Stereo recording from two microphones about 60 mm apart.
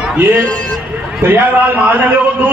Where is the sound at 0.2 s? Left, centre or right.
Right.